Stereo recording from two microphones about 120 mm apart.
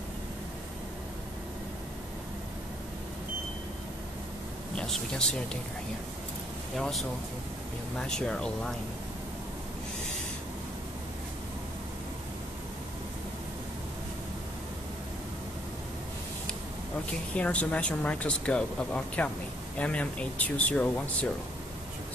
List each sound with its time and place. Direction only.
4.7 s speech: 5° left (ahead or behind)
6.8 s speech: centre (ahead or behind)
17.4 s speech: 10° left (ahead or behind)